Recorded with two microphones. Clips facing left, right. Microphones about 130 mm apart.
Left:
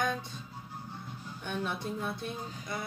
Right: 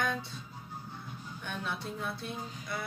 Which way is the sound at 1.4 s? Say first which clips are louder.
Left 3 dB; 20° left (ahead or behind).